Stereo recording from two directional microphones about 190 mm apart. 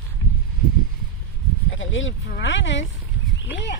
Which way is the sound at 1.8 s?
90° left.